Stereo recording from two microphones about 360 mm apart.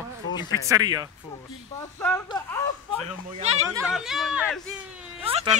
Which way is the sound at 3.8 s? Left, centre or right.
Centre.